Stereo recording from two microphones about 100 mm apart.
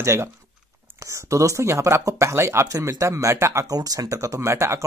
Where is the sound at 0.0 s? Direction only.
30° right (ahead or behind).